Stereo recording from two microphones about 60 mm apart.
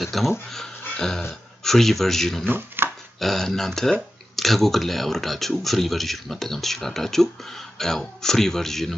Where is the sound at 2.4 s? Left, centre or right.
Right.